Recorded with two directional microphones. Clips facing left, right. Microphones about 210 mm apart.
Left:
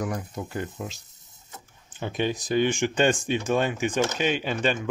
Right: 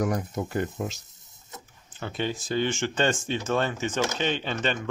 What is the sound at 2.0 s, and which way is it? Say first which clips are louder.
Speech: left 3 dB; 15° left (ahead or behind).